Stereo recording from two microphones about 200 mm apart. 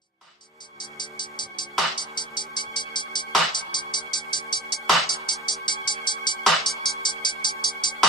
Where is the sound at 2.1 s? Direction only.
20° left (ahead or behind).